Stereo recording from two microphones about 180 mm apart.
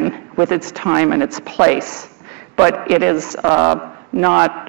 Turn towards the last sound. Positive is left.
turn(degrees=-10)  # may be behind; listen again after turning